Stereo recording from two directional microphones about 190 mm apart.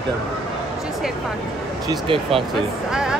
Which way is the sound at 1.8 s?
25° right (ahead or behind).